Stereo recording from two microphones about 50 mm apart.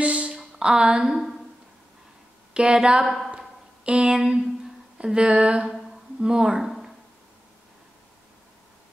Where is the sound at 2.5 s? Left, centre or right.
Centre.